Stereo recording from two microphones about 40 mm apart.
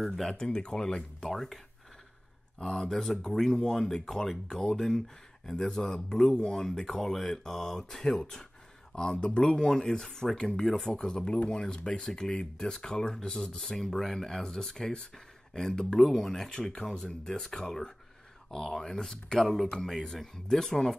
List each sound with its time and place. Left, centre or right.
0.0 s speech: centre
0.3 s speech: centre
1.3 s speech: centre
2.6 s speech: centre
9.6 s speech: centre
10.4 s speech: left
19.4 s speech: centre